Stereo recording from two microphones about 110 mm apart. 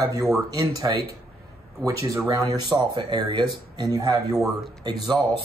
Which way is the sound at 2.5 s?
45° right (ahead or behind).